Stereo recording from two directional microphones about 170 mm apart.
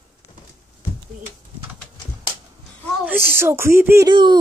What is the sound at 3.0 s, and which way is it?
Speech, 15° right (ahead or behind).